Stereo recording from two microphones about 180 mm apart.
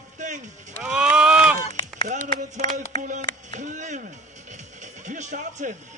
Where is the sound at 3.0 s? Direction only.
45° right (ahead or behind).